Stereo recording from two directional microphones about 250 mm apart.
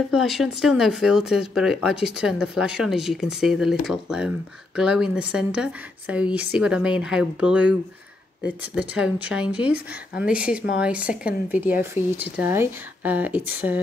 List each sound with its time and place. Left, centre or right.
0.1 s speech: centre